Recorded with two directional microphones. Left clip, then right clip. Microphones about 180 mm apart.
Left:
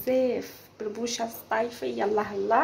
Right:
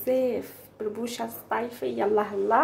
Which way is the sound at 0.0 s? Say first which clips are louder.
Even; 5° right (ahead or behind).